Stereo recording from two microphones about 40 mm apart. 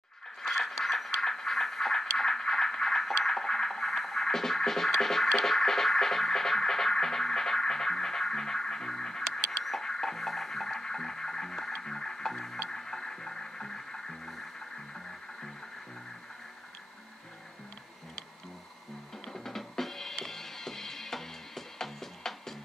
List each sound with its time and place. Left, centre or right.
0.4 s a sound: centre
12.6 s toilet flush: centre
19.3 s drum: centre
20.2 s music: centre